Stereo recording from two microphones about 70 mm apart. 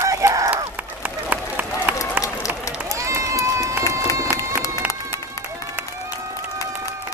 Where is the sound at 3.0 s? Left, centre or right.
Right.